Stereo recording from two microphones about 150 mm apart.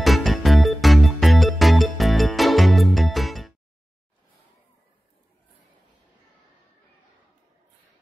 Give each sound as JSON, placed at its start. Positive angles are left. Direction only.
{"t": 0.0, "sound": "music", "side_deg": 0}